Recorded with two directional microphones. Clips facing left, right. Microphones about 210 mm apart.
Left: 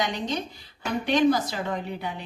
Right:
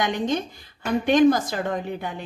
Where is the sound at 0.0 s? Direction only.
50° right (ahead or behind).